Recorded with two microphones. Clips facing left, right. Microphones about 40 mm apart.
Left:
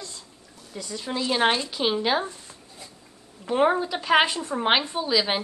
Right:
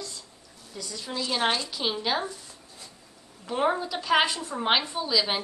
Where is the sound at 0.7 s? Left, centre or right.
Left.